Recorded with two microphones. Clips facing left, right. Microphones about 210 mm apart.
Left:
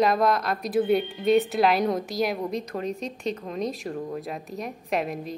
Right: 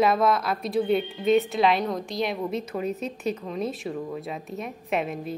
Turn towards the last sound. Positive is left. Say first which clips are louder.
# even
turn(degrees=0)  # may be behind; listen again after turning